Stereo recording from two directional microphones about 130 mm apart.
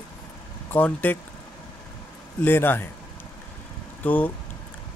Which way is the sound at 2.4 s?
15° left (ahead or behind).